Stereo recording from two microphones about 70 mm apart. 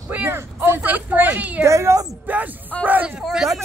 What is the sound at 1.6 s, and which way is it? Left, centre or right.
Speech, right.